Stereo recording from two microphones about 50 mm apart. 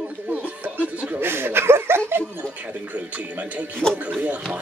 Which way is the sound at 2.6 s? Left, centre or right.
Right.